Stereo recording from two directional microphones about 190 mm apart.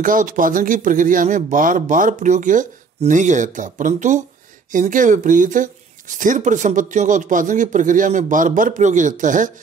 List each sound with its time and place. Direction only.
0.0 s speech: 45° right (ahead or behind)